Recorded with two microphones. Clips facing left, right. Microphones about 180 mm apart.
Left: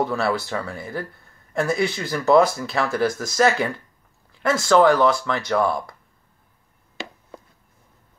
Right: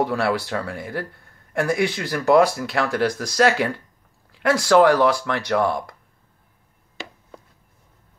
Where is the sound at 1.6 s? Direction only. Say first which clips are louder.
Right 1 dB; 10° right (ahead or behind).